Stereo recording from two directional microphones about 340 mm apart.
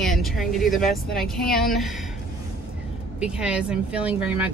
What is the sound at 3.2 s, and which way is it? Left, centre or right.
Speech, centre.